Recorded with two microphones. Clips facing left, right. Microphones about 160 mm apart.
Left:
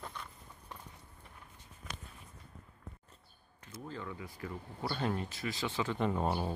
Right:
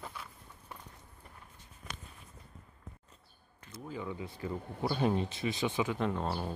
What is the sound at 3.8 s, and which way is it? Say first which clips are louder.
Speech: right 4 dB; 15° right (ahead or behind).